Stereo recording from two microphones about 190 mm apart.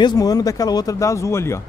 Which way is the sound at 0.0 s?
20° left (ahead or behind).